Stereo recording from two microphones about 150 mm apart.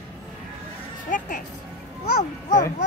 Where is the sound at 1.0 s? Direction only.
60° left (ahead or behind).